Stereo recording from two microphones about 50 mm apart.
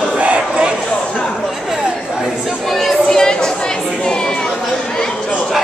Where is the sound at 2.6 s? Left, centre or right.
Centre.